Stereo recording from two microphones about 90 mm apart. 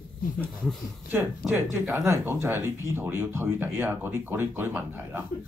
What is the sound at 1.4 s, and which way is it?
Speech, 20° right (ahead or behind).